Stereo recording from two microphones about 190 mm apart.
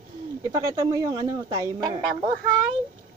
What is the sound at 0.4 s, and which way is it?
Speech, 20° right (ahead or behind).